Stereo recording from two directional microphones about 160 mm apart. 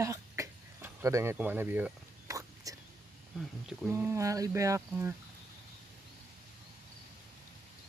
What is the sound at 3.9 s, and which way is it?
Speech, 15° right (ahead or behind).